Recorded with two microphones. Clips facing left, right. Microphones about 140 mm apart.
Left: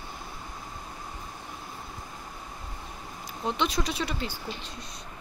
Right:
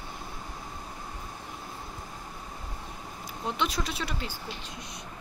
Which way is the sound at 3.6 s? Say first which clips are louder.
Left 2 dB; 5° right (ahead or behind).